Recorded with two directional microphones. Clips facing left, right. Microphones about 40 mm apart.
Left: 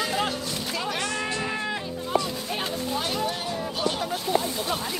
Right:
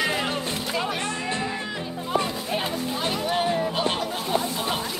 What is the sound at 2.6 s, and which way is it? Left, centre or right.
Music, right.